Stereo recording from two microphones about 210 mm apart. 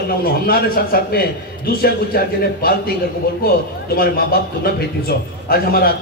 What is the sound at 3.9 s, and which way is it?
A man's voice, 45° left (ahead or behind).